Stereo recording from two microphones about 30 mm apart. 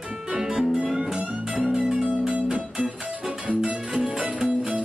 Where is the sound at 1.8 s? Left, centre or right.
Right.